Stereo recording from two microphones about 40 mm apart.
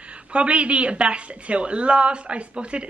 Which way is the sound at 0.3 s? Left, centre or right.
Right.